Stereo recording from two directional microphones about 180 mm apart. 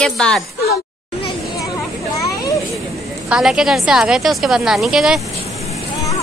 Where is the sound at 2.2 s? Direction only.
20° left (ahead or behind).